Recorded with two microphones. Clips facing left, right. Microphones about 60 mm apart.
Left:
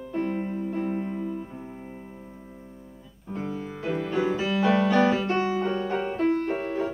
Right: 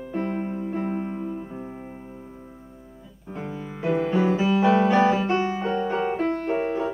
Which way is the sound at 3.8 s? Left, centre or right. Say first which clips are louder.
Right 5 dB; right.